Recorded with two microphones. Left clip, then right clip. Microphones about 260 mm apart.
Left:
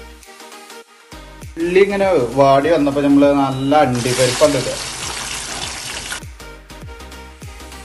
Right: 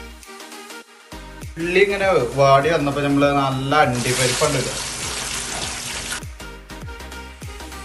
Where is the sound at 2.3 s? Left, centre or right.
Left.